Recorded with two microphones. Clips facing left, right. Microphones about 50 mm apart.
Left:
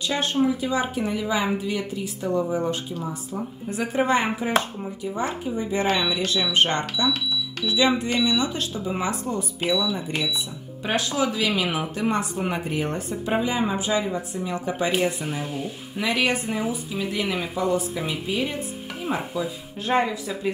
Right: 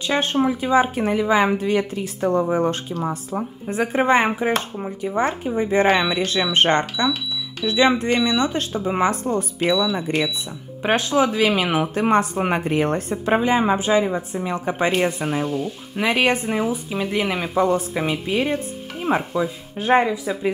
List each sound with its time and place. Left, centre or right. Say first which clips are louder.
0.0 s speech: right 3 dB; right
3.6 s speech: right 4 dB; right
10.8 s speech: right 6 dB; right
15.4 s speech: right 6 dB; centre
16.0 s speech: right 4 dB; right
17.2 s speech: right 2 dB; centre
17.6 s speech: right 6 dB; right
19.3 s speech: right 5 dB; right